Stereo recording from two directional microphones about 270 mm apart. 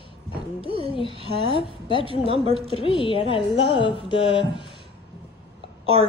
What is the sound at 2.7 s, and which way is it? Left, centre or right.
Speech, centre.